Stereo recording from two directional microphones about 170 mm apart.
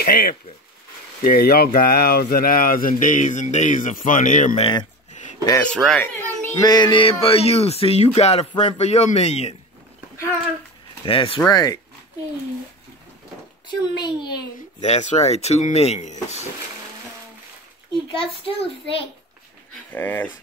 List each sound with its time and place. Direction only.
0.0 s speech: 60° left (ahead or behind)
4.6 s a child's voice: 30° left (ahead or behind)
5.1 s a sound: 45° left (ahead or behind)
5.6 s a child's voice: 5° left (ahead or behind)
6.6 s a man's voice: 25° left (ahead or behind)
11.1 s a man's voice: 35° left (ahead or behind)
11.4 s a child's voice: 20° left (ahead or behind)
13.7 s a child's voice: 25° left (ahead or behind)
14.8 s a man's voice: 40° left (ahead or behind)
18.1 s a man's voice: 30° left (ahead or behind)
19.7 s speech: 10° left (ahead or behind)